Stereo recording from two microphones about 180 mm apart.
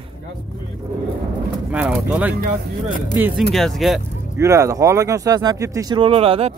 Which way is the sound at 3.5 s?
Centre (ahead or behind).